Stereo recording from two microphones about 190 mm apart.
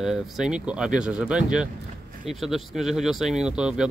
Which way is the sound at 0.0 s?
Centre (ahead or behind).